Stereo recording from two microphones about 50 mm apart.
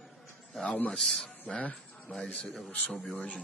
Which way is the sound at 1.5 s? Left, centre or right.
Left.